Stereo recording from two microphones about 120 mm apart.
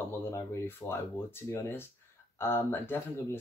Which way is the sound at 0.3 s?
20° left (ahead or behind).